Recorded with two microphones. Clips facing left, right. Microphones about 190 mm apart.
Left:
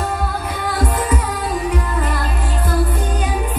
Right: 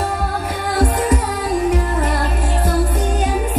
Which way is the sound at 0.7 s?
45° right (ahead or behind).